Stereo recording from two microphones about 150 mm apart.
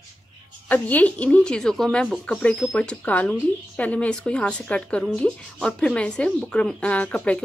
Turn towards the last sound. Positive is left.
turn(degrees=10)  # may be behind; listen again after turning